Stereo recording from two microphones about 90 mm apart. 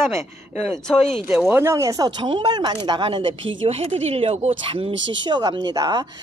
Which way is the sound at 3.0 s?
85° right.